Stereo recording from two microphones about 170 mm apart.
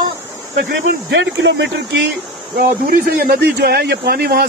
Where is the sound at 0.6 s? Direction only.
90° right.